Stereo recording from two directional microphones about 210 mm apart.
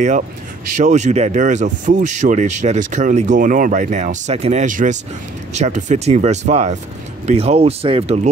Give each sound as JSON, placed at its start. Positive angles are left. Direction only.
{"t": 0.7, "sound": "speech", "side_deg": -35}